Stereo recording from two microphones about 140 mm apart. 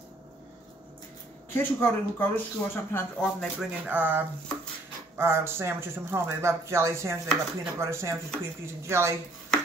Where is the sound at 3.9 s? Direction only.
15° right (ahead or behind).